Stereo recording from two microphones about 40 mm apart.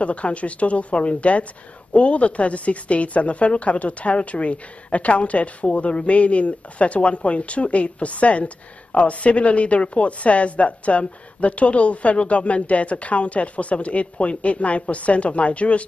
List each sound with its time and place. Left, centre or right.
0.0 s a woman's voice: left